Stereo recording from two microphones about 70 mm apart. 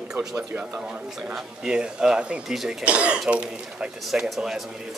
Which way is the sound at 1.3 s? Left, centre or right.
Centre.